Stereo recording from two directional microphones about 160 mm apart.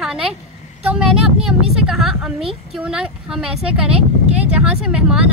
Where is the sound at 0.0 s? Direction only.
5° right (ahead or behind).